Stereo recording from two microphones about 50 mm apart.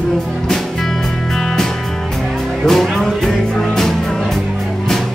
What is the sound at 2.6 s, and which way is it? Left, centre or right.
Music, centre.